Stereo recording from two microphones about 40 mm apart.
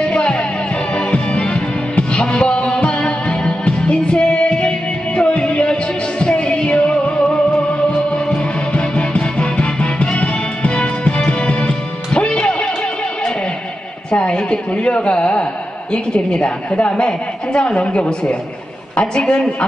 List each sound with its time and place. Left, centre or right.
0.0 s music: left
10.0 s music: centre
10.6 s music: left
11.2 s music: left
14.1 s a sound: left
14.9 s a woman's voice: left
17.7 s a woman's voice: left